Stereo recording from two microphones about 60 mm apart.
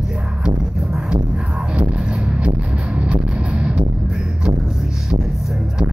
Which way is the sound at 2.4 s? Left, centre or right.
Centre.